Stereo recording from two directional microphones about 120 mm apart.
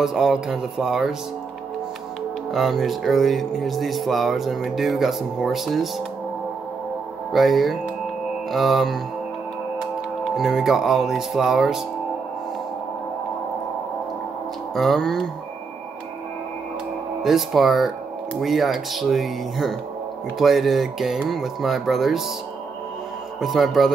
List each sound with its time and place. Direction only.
0.0 s speech: 5° right (ahead or behind)
2.5 s speech: centre (ahead or behind)
7.3 s speech: centre (ahead or behind)
10.2 s speech: centre (ahead or behind)
14.7 s speech: centre (ahead or behind)
17.2 s speech: centre (ahead or behind)
23.4 s speech: centre (ahead or behind)